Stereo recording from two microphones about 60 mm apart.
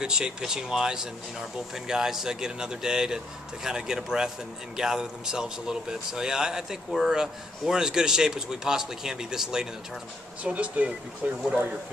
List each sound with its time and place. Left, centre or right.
0.0 s speech: centre
10.4 s speech: right